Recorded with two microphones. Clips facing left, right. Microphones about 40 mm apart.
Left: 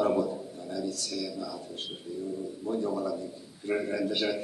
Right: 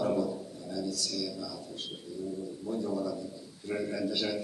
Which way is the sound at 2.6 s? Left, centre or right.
Left.